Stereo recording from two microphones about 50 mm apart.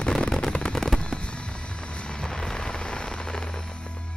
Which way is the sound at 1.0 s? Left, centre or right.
Left.